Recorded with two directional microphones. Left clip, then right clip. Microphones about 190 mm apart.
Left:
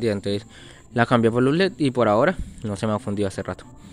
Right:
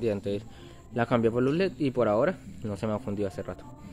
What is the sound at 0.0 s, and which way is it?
Speech, 40° left (ahead or behind).